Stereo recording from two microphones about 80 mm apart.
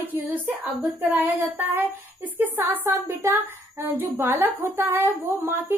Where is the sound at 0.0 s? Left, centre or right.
Right.